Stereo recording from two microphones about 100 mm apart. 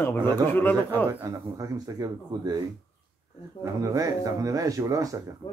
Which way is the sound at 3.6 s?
35° right (ahead or behind).